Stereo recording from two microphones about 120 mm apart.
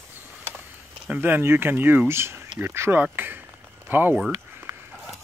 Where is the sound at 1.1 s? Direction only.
15° right (ahead or behind).